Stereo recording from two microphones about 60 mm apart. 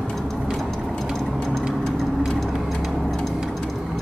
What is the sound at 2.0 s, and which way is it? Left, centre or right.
Vehicle, centre.